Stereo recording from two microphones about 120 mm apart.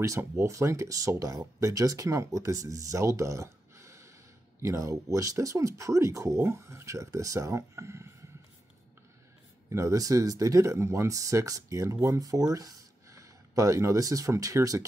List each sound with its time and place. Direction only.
0.0 s speech: 25° right (ahead or behind)
9.7 s speech: 25° right (ahead or behind)